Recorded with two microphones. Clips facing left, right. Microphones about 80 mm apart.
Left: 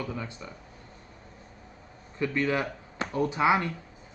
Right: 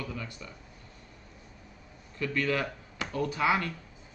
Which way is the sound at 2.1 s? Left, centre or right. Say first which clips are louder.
Left 2 dB; left.